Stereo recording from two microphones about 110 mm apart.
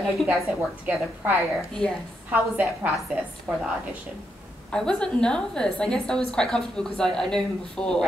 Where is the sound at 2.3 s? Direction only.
15° right (ahead or behind).